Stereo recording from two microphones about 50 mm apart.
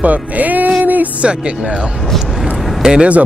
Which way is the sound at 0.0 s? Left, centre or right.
Right.